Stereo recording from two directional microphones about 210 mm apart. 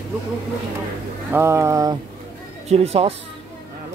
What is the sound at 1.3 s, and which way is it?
Speech, 10° right (ahead or behind).